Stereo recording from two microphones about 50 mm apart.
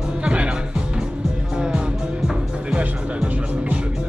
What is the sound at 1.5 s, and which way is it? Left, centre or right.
Music, centre.